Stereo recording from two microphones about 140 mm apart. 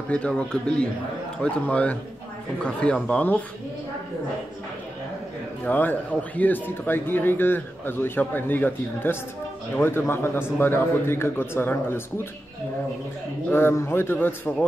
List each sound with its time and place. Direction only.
0.1 s speech: 10° left (ahead or behind)
5.7 s speech: 10° left (ahead or behind)
13.5 s speech: 15° left (ahead or behind)